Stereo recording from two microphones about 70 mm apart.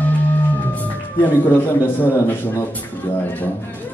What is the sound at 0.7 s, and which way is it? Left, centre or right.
A man's voice, left.